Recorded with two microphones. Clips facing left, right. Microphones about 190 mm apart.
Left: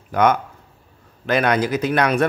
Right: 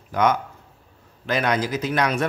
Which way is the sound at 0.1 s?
55° left (ahead or behind).